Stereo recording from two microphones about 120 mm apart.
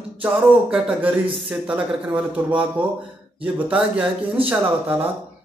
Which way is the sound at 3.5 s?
10° right (ahead or behind).